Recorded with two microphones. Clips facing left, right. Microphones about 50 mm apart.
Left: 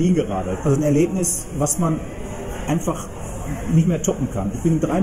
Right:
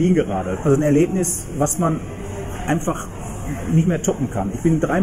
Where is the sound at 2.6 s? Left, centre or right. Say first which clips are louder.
Right 1 dB; right.